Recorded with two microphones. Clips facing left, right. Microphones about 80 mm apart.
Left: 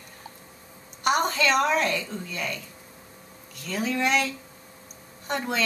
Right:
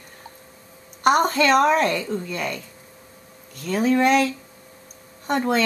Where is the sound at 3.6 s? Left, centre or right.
Right.